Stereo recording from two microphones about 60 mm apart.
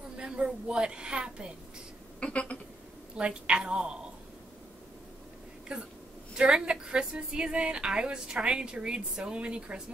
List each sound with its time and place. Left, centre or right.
0.2 s a woman's voice: centre
2.1 s a sound: centre
3.2 s a woman's voice: centre
5.7 s a woman's voice: centre